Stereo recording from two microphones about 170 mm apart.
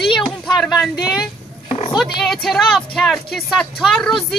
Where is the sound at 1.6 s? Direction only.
35° left (ahead or behind).